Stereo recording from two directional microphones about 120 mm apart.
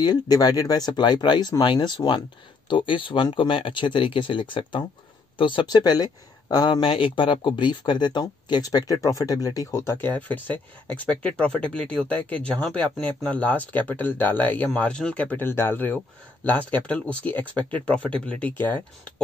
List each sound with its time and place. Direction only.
0.0 s speech: 35° left (ahead or behind); by 19.2 s 15° left (ahead or behind)